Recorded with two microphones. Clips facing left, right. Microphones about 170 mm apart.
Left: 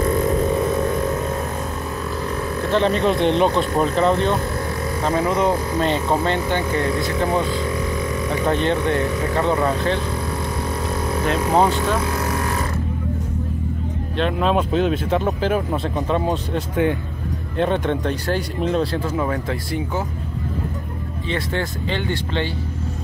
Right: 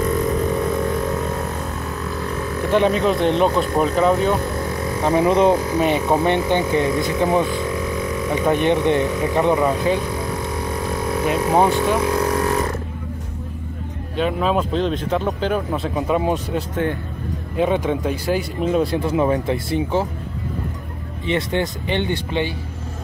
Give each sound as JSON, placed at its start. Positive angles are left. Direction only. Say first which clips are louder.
{"t": 2.7, "sound": "speech", "louder": "right 1 dB", "side_deg": -10}
{"t": 5.0, "sound": "speech", "louder": "right 4 dB", "side_deg": -20}
{"t": 11.2, "sound": "speech", "louder": "right 1 dB", "side_deg": -15}
{"t": 14.1, "sound": "speech", "louder": "even", "side_deg": -5}
{"t": 18.8, "sound": "speech", "louder": "right 3 dB", "side_deg": -20}
{"t": 21.3, "sound": "speech", "louder": "right 4 dB", "side_deg": -20}